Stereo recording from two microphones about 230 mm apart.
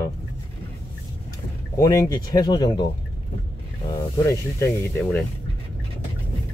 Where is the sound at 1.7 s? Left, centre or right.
Centre.